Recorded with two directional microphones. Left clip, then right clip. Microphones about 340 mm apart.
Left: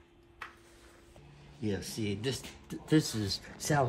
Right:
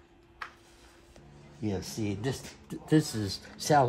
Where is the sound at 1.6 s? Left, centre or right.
Centre.